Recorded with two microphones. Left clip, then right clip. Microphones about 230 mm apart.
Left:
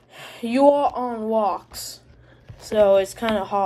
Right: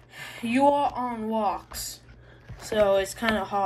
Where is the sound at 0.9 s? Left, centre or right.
Centre.